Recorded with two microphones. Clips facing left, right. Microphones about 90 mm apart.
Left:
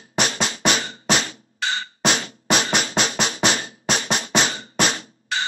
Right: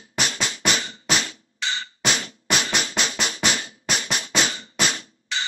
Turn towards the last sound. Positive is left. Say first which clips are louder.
# left 3 dB
turn(degrees=45)  # may be behind; listen again after turning